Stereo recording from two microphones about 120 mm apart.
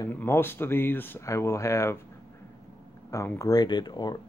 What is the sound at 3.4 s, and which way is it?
Speech, 30° left (ahead or behind).